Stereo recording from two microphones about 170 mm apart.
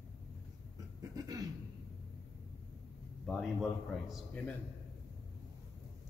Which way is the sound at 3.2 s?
Centre (ahead or behind).